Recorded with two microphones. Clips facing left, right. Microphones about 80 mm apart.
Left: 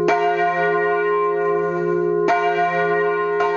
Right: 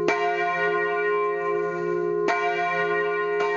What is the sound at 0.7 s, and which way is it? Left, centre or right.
Church bell, left.